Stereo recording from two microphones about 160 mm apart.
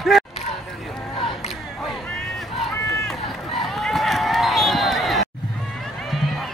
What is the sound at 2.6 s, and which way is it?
Run, centre (ahead or behind).